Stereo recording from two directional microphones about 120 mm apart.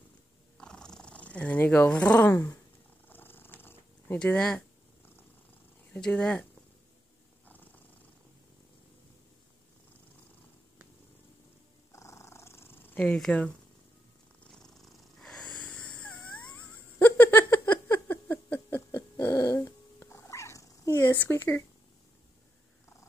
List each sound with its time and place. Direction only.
0.6 s purr: 5° left (ahead or behind)
5.9 s speech: 5° left (ahead or behind)
7.4 s purr: 15° left (ahead or behind)
11.9 s purr: 25° left (ahead or behind); by 16.1 s 10° left (ahead or behind)
17.0 s a sound: 15° left (ahead or behind)
18.9 s dog: 35° left (ahead or behind)
19.2 s cat: 30° left (ahead or behind)